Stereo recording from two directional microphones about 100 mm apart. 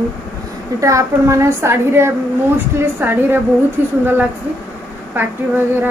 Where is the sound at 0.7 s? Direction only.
30° right (ahead or behind).